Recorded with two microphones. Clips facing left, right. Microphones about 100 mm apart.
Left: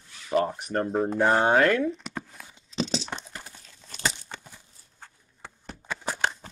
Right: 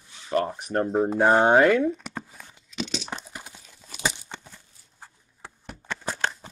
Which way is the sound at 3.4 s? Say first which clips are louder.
Right 1 dB; 10° right (ahead or behind).